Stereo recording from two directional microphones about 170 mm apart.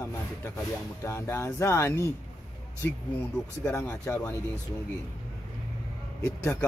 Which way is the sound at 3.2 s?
10° left (ahead or behind).